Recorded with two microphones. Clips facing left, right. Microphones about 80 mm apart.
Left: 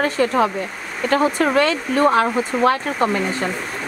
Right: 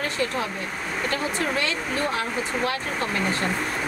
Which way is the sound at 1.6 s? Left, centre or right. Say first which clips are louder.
Left 10 dB; left.